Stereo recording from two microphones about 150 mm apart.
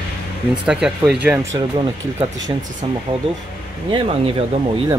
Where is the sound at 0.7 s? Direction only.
5° right (ahead or behind).